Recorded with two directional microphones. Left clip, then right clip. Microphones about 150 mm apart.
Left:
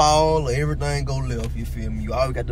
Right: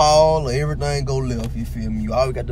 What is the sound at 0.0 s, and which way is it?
Speech, 20° right (ahead or behind).